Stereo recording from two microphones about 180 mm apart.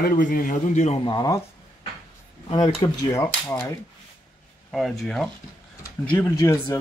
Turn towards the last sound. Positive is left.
turn(degrees=15)  # may be behind; listen again after turning